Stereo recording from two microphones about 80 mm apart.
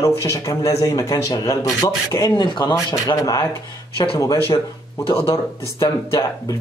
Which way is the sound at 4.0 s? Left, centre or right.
Left.